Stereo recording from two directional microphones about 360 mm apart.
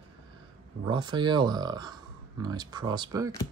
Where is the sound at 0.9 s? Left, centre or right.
Centre.